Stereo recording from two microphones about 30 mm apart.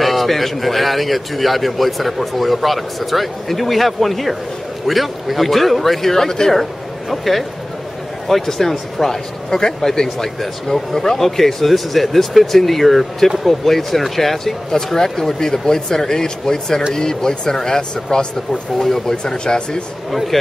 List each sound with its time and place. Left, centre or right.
0.0 s a man's voice: centre
6.5 s speech: centre
9.0 s a man's voice: centre
9.5 s speech: centre
10.0 s a man's voice: centre
14.8 s speech: left
19.2 s speech: left
20.1 s a man's voice: centre